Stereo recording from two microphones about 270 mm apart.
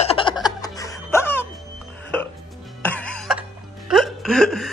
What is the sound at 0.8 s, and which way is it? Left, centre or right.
Music, centre.